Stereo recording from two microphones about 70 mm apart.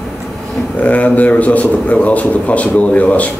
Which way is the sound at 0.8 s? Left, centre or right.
Left.